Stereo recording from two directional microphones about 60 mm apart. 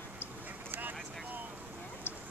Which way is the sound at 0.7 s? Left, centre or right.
Right.